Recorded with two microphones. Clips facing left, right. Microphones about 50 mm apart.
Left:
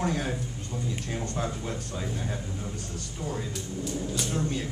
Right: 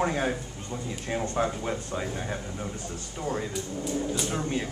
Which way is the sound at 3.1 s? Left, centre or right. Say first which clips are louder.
Right 3 dB; right.